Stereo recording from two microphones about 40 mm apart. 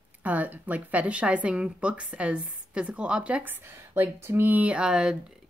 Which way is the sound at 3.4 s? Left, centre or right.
Right.